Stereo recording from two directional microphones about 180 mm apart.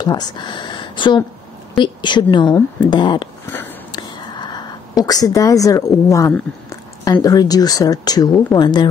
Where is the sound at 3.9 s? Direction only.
25° left (ahead or behind).